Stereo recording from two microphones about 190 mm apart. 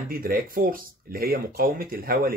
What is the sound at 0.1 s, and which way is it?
Speech, 50° right (ahead or behind).